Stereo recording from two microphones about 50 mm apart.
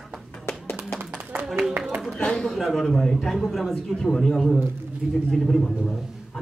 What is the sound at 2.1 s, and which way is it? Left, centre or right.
Speech, centre.